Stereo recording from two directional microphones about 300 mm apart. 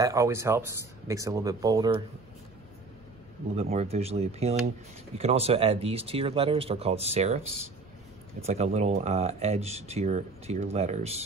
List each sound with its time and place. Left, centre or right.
0.0 s speech: centre
3.5 s speech: right
8.5 s speech: right